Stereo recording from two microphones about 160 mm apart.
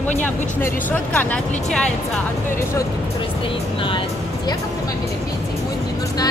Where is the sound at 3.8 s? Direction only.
30° left (ahead or behind).